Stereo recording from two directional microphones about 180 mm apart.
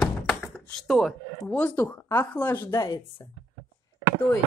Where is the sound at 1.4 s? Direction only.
10° left (ahead or behind).